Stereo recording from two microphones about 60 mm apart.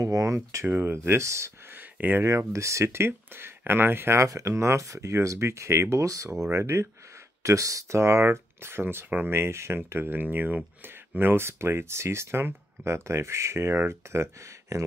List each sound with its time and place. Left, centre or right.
0.0 s speech: right
0.7 s speech: right
0.9 s speech: right
1.8 s a sound: right
2.2 s speech: right
4.2 s speech: right
6.5 s speech: right
7.4 s speech: right
11.1 s speech: right